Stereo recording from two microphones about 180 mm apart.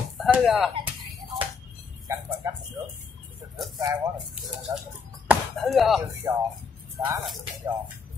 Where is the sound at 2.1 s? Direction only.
15° right (ahead or behind).